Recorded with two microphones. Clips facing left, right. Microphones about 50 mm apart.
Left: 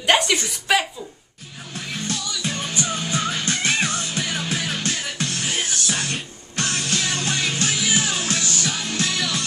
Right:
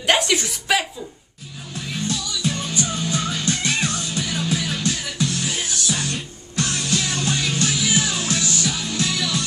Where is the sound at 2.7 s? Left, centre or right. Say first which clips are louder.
Right 1 dB; left.